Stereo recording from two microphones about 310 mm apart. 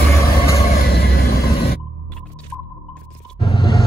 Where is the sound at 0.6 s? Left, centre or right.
Left.